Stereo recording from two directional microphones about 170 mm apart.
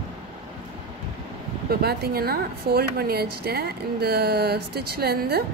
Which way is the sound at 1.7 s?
65° right (ahead or behind).